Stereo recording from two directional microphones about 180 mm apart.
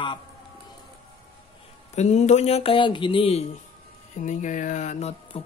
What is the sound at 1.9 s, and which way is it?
Speech, 40° left (ahead or behind).